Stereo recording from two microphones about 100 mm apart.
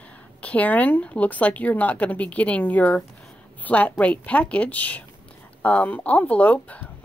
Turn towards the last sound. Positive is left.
turn(degrees=15)  # may be behind; listen again after turning